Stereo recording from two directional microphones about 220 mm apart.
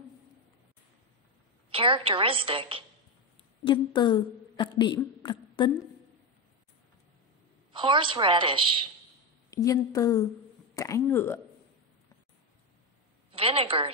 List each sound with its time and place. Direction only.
1.7 s a woman's voice: 25° right (ahead or behind)
3.6 s a woman's voice: 20° left (ahead or behind)
7.7 s a woman's voice: 20° right (ahead or behind)
9.5 s a woman's voice: 15° left (ahead or behind)
10.7 s hiccup: 15° left (ahead or behind)
11.1 s a woman's voice: 10° left (ahead or behind)
13.3 s a woman's voice: 25° right (ahead or behind)